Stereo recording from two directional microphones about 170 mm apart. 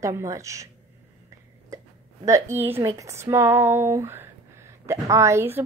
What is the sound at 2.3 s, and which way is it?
Speech, 15° right (ahead or behind).